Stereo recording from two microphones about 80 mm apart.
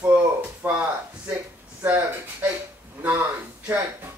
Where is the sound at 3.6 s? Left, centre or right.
Right.